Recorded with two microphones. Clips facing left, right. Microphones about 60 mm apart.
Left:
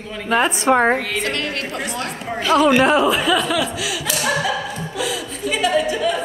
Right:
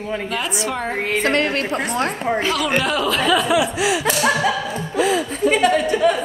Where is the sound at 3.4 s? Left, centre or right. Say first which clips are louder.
Right 3 dB; centre.